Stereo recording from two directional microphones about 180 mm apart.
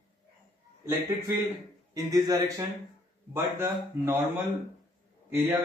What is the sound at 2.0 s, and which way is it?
A man's voice, 20° right (ahead or behind).